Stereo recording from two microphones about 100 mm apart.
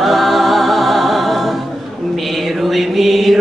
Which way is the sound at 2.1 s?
Centre (ahead or behind).